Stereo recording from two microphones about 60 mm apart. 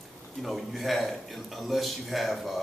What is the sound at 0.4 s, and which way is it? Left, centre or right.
A man's voice, centre.